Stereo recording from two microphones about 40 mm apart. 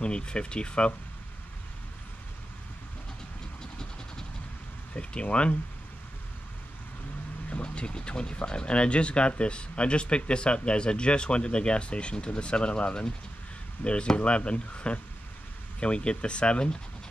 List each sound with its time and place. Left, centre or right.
0.0 s speech: left
4.9 s speech: left
7.6 s speech: left